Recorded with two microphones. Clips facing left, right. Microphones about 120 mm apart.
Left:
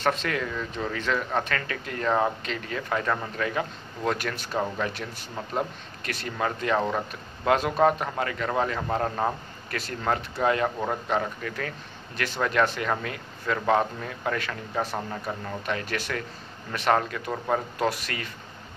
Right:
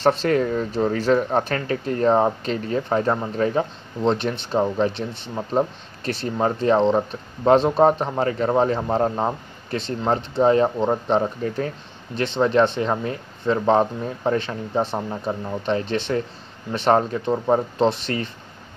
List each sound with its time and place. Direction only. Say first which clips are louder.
0.0 s speech: right 8 dB; 30° right (ahead or behind)